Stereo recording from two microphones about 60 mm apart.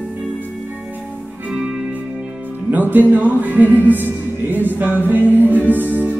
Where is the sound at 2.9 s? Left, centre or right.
Right.